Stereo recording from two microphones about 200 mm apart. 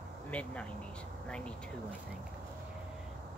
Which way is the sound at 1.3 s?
5° left (ahead or behind).